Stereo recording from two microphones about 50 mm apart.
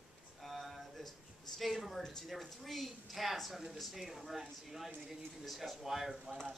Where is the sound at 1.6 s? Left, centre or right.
Centre.